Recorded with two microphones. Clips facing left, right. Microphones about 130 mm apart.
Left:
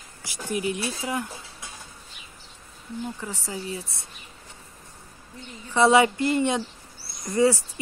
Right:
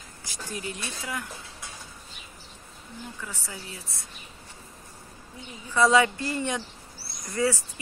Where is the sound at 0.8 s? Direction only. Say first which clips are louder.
Left 6 dB; 25° left (ahead or behind).